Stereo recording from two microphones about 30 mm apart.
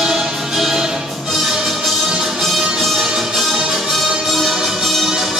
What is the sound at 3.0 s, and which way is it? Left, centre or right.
Music, centre.